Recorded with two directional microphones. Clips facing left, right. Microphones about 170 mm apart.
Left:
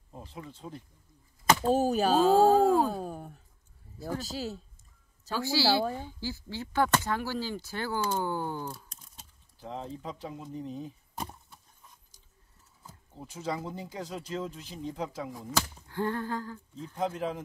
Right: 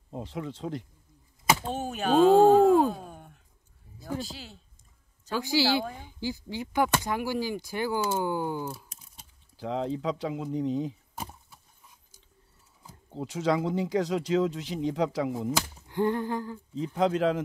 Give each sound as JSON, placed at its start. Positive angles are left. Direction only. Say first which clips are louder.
{"t": 0.1, "sound": "speech", "louder": "right 9 dB", "side_deg": -80}
{"t": 1.7, "sound": "speech", "louder": "left 3 dB", "side_deg": 35}
{"t": 5.3, "sound": "speech", "louder": "right 1 dB", "side_deg": -15}
{"t": 9.6, "sound": "speech", "louder": "right 9 dB", "side_deg": -85}
{"t": 13.1, "sound": "speech", "louder": "right 8 dB", "side_deg": -80}
{"t": 15.5, "sound": "speech", "louder": "right 2 dB", "side_deg": -15}
{"t": 16.7, "sound": "speech", "louder": "right 8 dB", "side_deg": -85}